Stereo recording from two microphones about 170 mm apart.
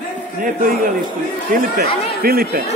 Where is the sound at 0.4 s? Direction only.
55° right (ahead or behind).